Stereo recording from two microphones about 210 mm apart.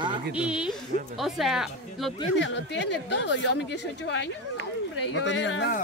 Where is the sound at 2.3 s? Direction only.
60° left (ahead or behind).